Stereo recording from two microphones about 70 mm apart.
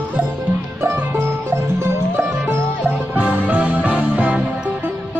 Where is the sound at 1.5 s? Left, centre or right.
Right.